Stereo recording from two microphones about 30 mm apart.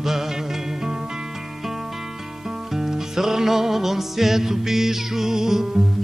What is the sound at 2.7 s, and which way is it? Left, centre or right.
Music, centre.